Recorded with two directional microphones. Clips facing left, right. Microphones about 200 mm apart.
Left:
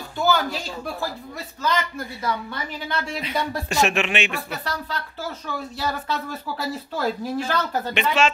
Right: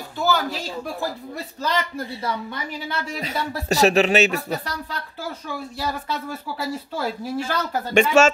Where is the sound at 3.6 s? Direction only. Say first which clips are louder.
Right 8 dB; 35° right (ahead or behind).